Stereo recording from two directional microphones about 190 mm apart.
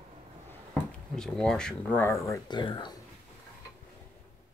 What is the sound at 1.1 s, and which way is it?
Speech, 5° left (ahead or behind).